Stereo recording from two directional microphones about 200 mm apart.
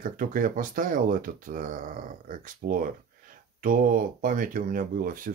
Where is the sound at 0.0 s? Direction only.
45° right (ahead or behind).